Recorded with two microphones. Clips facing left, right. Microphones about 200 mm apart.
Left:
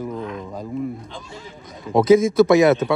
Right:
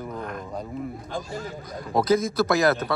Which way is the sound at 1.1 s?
45° right (ahead or behind).